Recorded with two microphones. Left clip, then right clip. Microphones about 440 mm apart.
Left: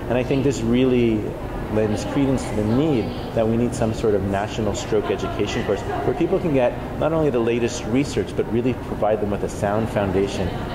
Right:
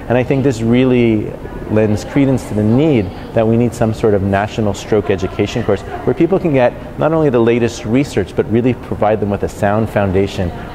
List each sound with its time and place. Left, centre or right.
0.1 s speech: right
1.8 s speech: right